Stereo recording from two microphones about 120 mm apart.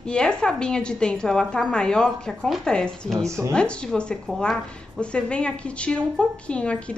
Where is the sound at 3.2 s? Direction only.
25° right (ahead or behind).